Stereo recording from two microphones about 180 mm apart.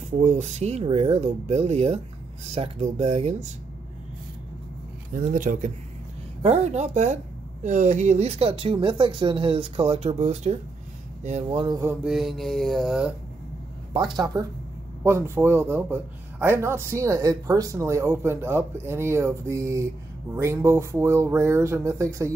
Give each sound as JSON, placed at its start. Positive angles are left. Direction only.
{"t": 0.1, "sound": "speech", "side_deg": -40}
{"t": 5.1, "sound": "speech", "side_deg": -50}
{"t": 6.4, "sound": "speech", "side_deg": -35}
{"t": 11.6, "sound": "mantra", "side_deg": -20}
{"t": 13.9, "sound": "speech", "side_deg": -25}
{"t": 15.0, "sound": "speech", "side_deg": -15}